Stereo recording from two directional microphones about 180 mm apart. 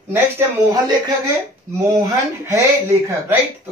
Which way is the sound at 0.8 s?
20° right (ahead or behind).